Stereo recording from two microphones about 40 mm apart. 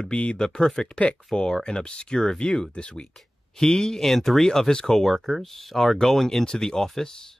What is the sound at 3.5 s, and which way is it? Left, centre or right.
Speech, centre.